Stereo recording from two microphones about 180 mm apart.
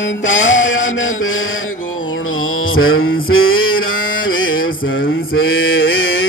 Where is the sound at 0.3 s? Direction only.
90° left.